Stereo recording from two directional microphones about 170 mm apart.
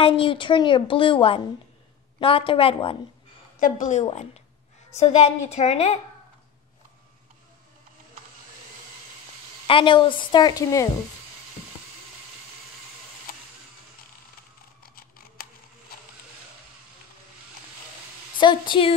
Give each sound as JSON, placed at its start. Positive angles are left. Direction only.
{"t": 0.0, "sound": "a woman's voice", "side_deg": 30}
{"t": 3.5, "sound": "a woman's voice", "side_deg": 50}
{"t": 9.7, "sound": "a woman's voice", "side_deg": 30}
{"t": 14.8, "sound": "a sound", "side_deg": 60}
{"t": 18.4, "sound": "a woman's voice", "side_deg": 25}